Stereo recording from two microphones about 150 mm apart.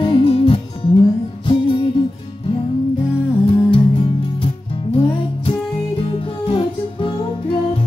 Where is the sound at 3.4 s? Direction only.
35° left (ahead or behind).